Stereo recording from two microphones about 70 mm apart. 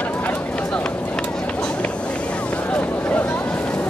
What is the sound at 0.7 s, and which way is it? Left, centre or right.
Run, centre.